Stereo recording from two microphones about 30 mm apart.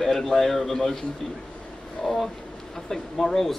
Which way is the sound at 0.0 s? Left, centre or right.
Centre.